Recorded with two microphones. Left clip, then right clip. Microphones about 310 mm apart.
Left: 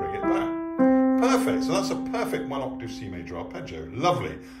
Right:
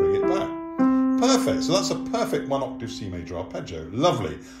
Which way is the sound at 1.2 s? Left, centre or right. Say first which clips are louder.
Right 2 dB; centre.